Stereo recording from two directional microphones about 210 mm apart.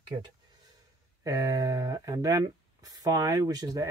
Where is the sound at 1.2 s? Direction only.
15° right (ahead or behind).